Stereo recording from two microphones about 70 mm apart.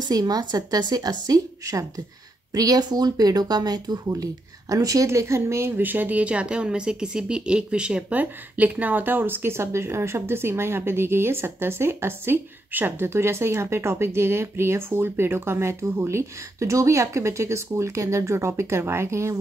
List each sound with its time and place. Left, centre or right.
0.1 s a woman's voice: right
4.1 s speech: right